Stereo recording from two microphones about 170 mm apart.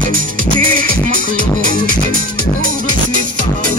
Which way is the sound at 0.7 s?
50° right (ahead or behind).